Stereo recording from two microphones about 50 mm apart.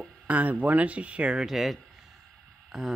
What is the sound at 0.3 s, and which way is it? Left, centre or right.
Speech, right.